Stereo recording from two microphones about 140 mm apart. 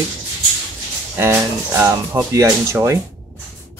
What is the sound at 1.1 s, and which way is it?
Speech, 15° right (ahead or behind).